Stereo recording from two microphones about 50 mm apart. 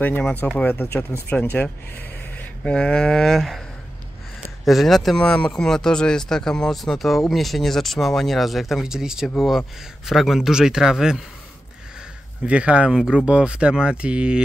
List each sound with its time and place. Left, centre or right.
0.4 s speech: left
2.6 s a sound: left
3.3 s speech: centre
4.6 s speech: centre
5.1 s speech: centre
8.8 s a man's voice: centre
12.4 s speech: right
12.9 s speech: centre